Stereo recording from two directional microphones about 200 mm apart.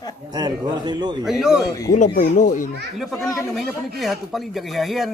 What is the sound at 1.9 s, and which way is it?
Speech, 40° left (ahead or behind).